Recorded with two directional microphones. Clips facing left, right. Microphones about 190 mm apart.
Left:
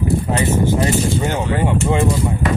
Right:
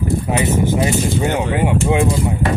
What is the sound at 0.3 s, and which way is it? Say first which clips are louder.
Speech: right 2 dB; 15° right (ahead or behind).